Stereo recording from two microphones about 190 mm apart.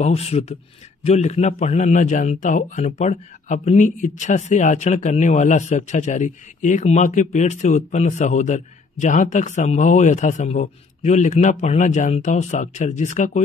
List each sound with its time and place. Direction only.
0.0 s a man's voice: 35° left (ahead or behind)